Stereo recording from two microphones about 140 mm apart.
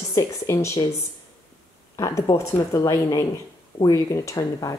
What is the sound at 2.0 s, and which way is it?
Speech, 25° left (ahead or behind).